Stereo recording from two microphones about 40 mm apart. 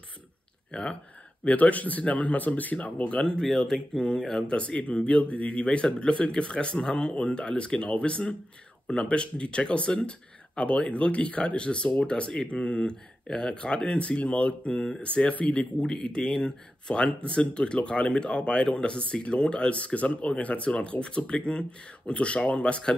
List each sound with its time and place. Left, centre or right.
0.7 s speech: left
1.4 s speech: left
3.3 s speech: centre
4.5 s speech: left
15.8 s speech: left